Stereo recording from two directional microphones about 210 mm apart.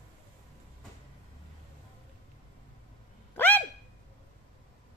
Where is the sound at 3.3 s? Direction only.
10° left (ahead or behind).